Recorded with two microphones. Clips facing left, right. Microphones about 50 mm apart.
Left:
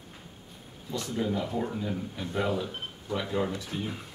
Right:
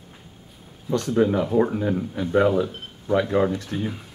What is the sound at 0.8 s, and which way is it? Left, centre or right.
Speech, right.